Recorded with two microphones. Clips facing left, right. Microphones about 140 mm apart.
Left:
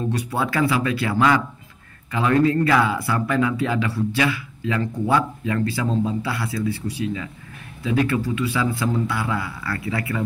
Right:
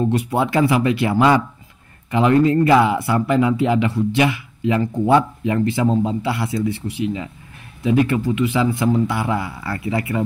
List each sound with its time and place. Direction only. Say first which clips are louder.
0.0 s speech: right 5 dB; 25° right (ahead or behind)